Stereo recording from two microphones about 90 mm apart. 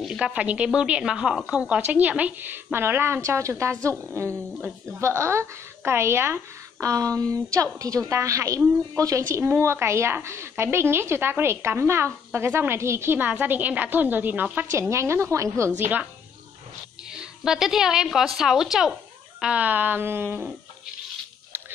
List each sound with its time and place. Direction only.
0.0 s a woman's voice: 5° right (ahead or behind); by 3.7 s 30° right (ahead or behind)
5.0 s a woman's voice: 30° right (ahead or behind)
14.7 s a woman's voice: 35° right (ahead or behind)
17.1 s a woman's voice: 5° right (ahead or behind)
19.4 s a woman's voice: 15° right (ahead or behind)